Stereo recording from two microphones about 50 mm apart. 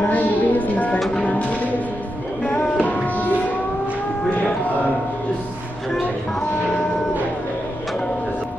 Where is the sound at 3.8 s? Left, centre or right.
Left.